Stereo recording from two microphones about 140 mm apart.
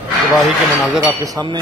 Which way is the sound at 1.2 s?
30° right (ahead or behind).